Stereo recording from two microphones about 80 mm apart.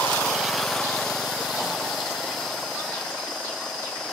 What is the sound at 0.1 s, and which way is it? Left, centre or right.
Lawn mower, centre.